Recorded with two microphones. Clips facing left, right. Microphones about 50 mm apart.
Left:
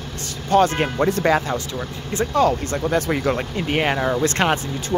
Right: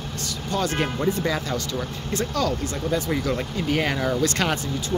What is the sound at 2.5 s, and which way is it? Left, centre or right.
Speech, left.